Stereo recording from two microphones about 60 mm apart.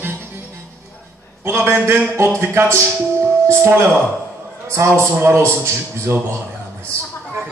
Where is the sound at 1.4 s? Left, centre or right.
Right.